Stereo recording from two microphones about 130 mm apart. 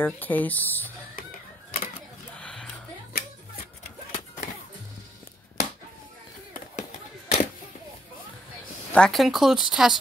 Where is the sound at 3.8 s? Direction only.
85° left.